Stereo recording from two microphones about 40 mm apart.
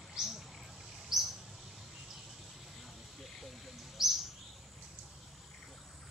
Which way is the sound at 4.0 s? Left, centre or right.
Centre.